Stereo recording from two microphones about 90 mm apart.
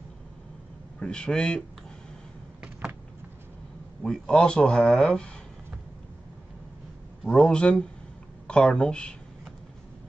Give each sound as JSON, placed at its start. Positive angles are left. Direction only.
{"t": 0.9, "sound": "speech", "side_deg": 10}
{"t": 2.6, "sound": "power windows", "side_deg": -15}
{"t": 4.0, "sound": "speech", "side_deg": 5}
{"t": 7.2, "sound": "speech", "side_deg": 10}